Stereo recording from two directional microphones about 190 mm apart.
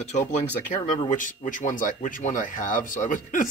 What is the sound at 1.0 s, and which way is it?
Speech, 40° left (ahead or behind).